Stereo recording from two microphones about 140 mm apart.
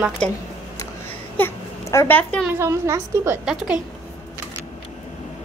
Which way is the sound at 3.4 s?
5° right (ahead or behind).